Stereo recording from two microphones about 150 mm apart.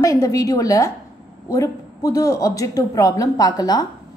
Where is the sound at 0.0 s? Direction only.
20° left (ahead or behind).